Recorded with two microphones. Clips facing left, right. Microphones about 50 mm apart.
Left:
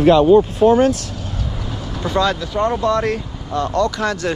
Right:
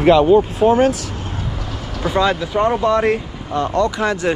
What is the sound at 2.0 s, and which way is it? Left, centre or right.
Speech, centre.